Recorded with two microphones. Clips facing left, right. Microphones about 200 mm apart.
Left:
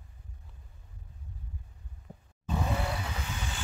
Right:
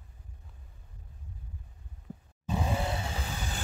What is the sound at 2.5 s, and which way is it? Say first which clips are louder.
Vehicle: right 1 dB; 15° right (ahead or behind).